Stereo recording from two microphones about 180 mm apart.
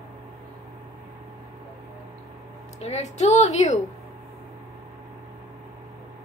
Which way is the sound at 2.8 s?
40° left (ahead or behind).